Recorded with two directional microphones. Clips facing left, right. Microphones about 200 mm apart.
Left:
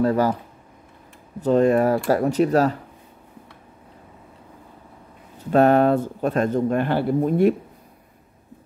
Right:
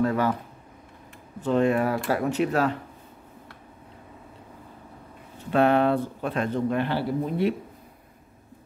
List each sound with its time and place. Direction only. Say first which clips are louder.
0.0 s speech: left 4 dB; 35° left (ahead or behind)
1.4 s speech: left 5 dB; 40° left (ahead or behind)
5.5 s speech: left 5 dB; 45° left (ahead or behind)